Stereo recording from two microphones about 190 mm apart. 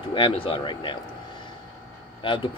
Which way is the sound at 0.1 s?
25° left (ahead or behind).